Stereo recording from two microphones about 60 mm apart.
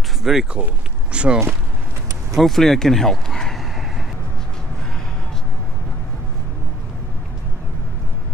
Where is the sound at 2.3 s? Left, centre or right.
Centre.